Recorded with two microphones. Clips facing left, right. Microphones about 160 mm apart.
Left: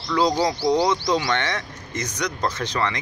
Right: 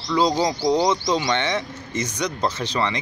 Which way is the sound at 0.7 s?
25° right (ahead or behind).